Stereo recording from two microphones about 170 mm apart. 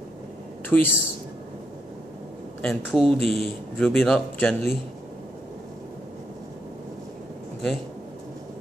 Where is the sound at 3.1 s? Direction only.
35° right (ahead or behind).